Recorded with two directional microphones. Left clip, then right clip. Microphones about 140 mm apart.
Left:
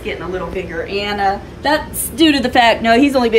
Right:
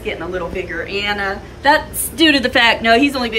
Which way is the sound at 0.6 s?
30° left (ahead or behind).